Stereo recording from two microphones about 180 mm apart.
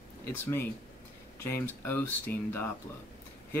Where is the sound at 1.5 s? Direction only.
10° left (ahead or behind).